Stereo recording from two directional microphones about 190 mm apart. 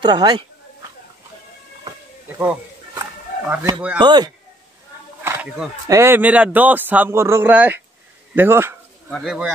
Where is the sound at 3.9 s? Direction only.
25° right (ahead or behind).